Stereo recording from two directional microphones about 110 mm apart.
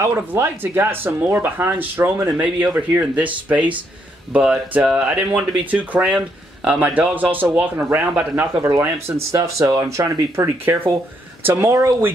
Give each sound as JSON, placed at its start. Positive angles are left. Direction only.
{"t": 0.0, "sound": "speech", "side_deg": -20}
{"t": 8.5, "sound": "speech", "side_deg": -25}